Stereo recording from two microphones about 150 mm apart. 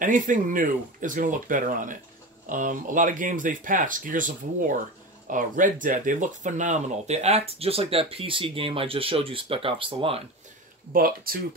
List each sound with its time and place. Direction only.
0.0 s speech: 60° right (ahead or behind); by 10.2 s 40° right (ahead or behind)
10.9 s speech: 75° right (ahead or behind)